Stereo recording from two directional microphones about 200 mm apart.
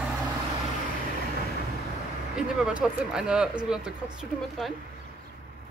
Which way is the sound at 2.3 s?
5° right (ahead or behind).